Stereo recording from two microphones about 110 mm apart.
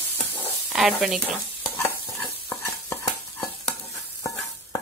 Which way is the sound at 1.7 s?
20° left (ahead or behind).